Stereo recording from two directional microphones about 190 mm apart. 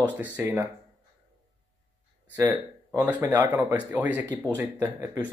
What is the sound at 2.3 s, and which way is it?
Speech, 15° right (ahead or behind).